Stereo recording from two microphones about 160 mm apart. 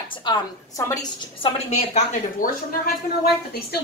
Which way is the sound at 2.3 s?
65° left (ahead or behind).